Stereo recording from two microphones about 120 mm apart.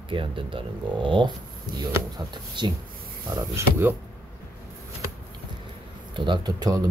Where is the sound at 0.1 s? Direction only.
45° right (ahead or behind).